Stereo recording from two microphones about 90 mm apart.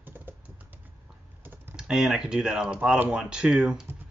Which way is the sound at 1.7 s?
5° right (ahead or behind).